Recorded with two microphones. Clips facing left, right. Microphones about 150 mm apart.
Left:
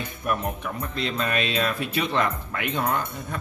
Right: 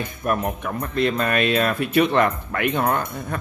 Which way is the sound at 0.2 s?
50° right (ahead or behind).